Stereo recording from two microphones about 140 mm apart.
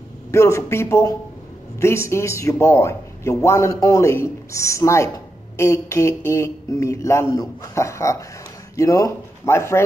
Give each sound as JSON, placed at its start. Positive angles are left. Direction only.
{"t": 0.3, "sound": "speech", "side_deg": 20}